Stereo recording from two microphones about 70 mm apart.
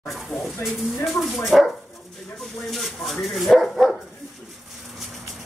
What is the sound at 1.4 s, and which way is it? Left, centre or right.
Speech, centre.